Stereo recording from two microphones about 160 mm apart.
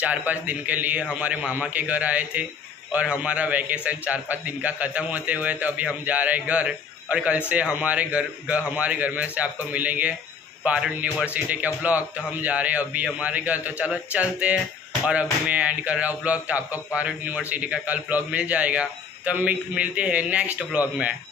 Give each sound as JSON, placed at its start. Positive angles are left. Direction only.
{"t": 0.0, "sound": "a man's voice", "side_deg": -10}